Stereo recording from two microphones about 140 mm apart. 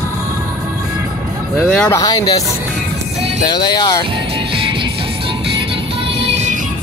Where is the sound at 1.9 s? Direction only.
30° left (ahead or behind).